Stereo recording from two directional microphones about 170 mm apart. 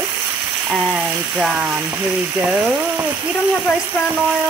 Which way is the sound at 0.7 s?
5° right (ahead or behind).